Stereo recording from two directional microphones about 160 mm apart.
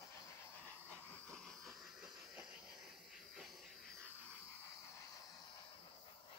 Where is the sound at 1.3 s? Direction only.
5° left (ahead or behind).